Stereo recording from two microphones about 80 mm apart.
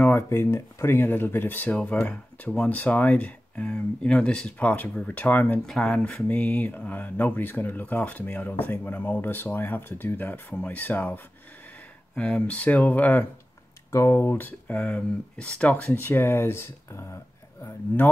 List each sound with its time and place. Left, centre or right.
0.0 s speech: left
5.7 s speech: centre
12.2 s speech: centre
13.9 s speech: left
17.6 s speech: left